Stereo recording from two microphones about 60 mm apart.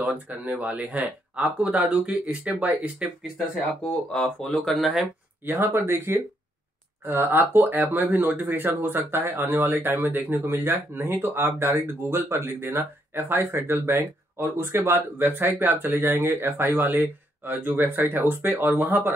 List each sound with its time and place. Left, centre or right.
0.0 s speech: right
4.2 s speech: left
4.6 s speech: centre
5.7 s speech: right